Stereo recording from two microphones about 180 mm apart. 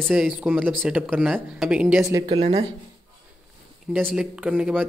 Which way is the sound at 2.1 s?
20° right (ahead or behind).